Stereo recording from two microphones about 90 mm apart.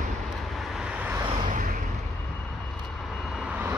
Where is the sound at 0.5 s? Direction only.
5° right (ahead or behind).